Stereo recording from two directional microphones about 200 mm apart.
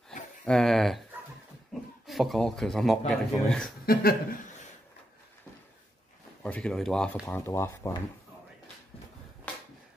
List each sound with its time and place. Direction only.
0.5 s a sound: centre (ahead or behind)
1.7 s speech: centre (ahead or behind)
3.8 s speech: 50° left (ahead or behind)
6.4 s speech: 5° left (ahead or behind)